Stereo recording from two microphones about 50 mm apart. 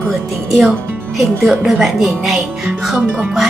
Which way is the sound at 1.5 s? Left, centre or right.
Centre.